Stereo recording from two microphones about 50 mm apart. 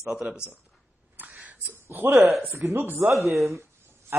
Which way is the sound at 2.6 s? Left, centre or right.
Right.